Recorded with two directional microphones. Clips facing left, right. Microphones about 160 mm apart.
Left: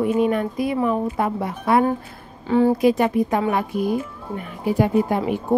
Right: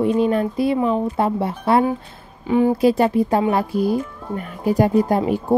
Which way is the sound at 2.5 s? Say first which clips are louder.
Even; 15° right (ahead or behind).